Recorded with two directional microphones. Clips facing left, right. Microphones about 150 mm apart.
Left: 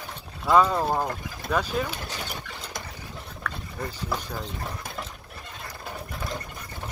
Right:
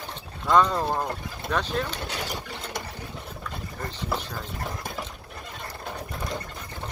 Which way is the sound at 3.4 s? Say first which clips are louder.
Left 4 dB; 70° left (ahead or behind).